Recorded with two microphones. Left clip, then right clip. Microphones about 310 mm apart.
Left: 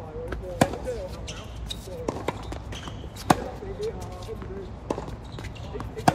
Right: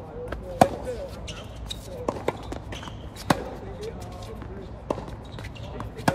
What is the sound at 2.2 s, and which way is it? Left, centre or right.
Run, right.